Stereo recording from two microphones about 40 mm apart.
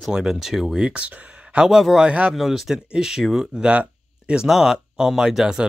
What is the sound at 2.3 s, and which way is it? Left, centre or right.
Speech, centre.